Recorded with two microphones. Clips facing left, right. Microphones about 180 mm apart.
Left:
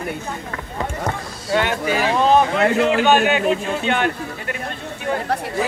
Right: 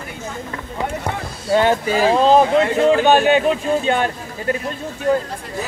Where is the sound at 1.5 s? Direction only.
35° right (ahead or behind).